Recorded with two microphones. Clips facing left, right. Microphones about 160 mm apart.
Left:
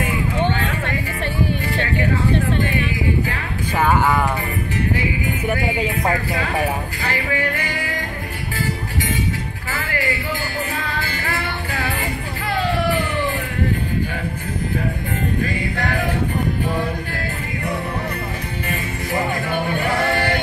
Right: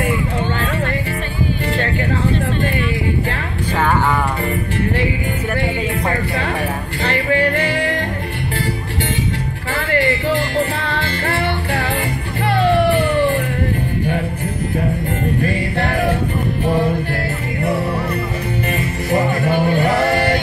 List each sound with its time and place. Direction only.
19.1 s music: 30° right (ahead or behind)